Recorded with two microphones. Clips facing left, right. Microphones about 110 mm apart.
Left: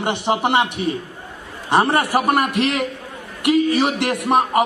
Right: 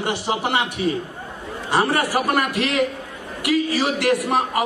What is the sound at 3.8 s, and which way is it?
Speech, 25° left (ahead or behind).